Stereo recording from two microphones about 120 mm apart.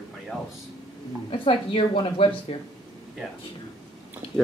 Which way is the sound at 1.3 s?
50° left (ahead or behind).